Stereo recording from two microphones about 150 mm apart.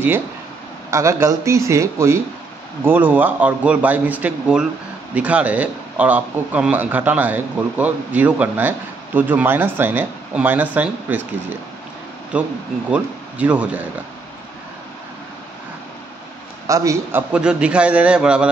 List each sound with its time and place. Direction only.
0.8 s a man's voice: 20° right (ahead or behind)
12.3 s a man's voice: 10° right (ahead or behind)
16.6 s a man's voice: 20° right (ahead or behind)
17.3 s a man's voice: 5° right (ahead or behind)